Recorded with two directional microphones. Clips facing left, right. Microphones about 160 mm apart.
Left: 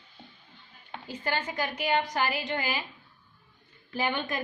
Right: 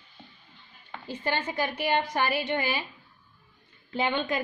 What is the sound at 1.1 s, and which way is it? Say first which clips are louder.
A woman's voice: right 2 dB; 25° right (ahead or behind).